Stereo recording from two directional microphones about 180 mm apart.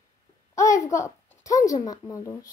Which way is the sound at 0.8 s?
15° left (ahead or behind).